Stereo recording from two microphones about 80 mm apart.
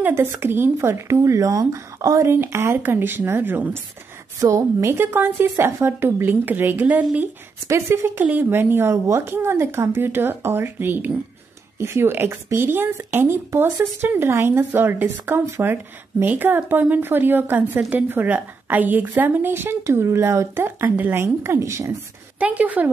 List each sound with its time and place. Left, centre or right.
0.1 s speech: right
4.4 s speech: right; by 7.2 s centre
7.6 s speech: right
22.4 s speech: centre